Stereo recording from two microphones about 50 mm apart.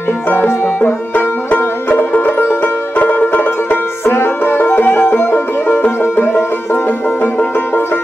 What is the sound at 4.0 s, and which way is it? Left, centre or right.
Music, left.